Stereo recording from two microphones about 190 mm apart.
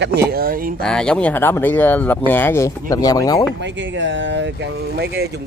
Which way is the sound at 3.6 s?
70° right (ahead or behind).